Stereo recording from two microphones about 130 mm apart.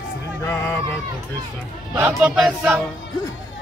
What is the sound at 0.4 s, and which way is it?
Music, 20° left (ahead or behind).